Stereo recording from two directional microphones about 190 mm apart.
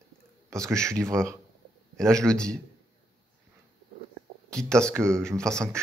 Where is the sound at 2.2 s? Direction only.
5° left (ahead or behind).